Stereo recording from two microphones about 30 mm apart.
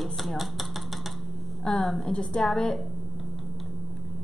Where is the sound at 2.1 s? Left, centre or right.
Left.